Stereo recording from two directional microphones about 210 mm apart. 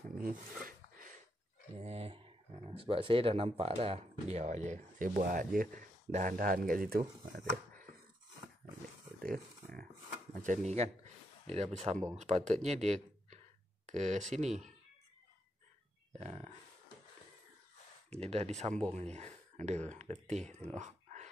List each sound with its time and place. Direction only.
0.2 s a sound: 40° right (ahead or behind)
1.8 s speech: 30° right (ahead or behind)
9.2 s a sound: 45° right (ahead or behind)
10.3 s speech: 35° right (ahead or behind)
16.1 s speech: 30° right (ahead or behind)
18.2 s speech: 30° right (ahead or behind)